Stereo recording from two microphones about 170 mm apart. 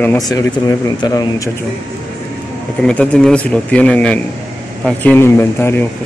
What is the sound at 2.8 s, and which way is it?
Speech, 5° left (ahead or behind).